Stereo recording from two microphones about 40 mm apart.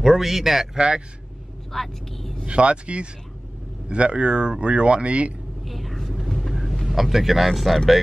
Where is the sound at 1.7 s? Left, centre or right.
Centre.